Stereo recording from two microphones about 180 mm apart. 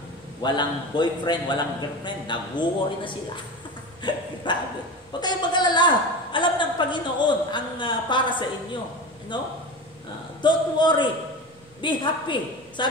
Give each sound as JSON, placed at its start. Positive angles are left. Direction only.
{"t": 0.4, "sound": "a woman's voice", "side_deg": 25}